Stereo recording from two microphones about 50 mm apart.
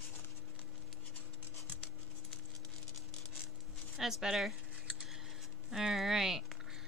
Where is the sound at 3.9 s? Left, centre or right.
Centre.